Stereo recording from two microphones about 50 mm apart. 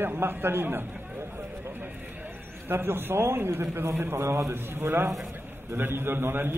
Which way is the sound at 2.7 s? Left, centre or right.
Right.